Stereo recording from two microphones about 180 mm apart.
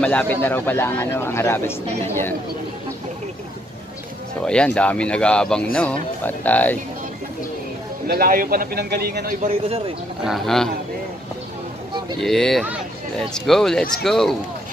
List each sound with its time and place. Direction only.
0.0 s speech: 10° left (ahead or behind)
4.5 s speech: 5° left (ahead or behind)
8.1 s a man's voice: 55° right (ahead or behind)
10.2 s speech: centre (ahead or behind)
12.2 s speech: centre (ahead or behind)